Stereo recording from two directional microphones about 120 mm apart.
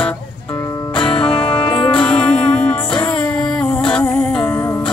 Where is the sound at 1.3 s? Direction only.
50° left (ahead or behind).